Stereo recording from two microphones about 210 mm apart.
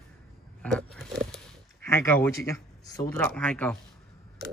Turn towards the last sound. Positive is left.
turn(degrees=5)  # may be behind; listen again after turning